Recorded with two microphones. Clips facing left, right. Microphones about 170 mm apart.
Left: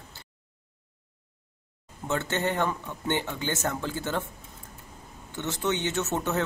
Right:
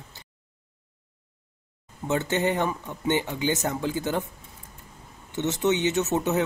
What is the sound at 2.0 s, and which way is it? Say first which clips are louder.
Speech: right 4 dB; 15° right (ahead or behind).